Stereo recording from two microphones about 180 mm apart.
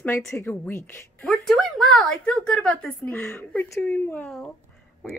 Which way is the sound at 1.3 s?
Centre (ahead or behind).